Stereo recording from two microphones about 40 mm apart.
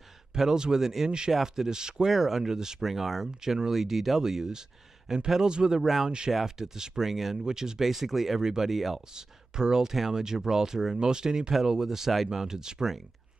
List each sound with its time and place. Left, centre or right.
0.3 s speech: centre
2.9 s speech: centre
7.4 s speech: centre
7.8 s speech: centre
8.6 s speech: centre
9.1 s speech: centre